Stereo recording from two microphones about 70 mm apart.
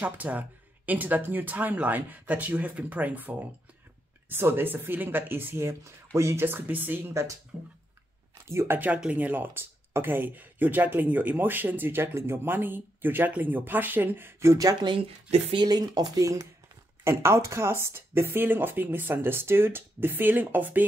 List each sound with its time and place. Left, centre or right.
0.0 s speech: right
6.4 s speech: right
7.5 s a sound: centre
8.5 s speech: right
8.7 s speech: right
14.6 s speech: right
17.0 s speech: right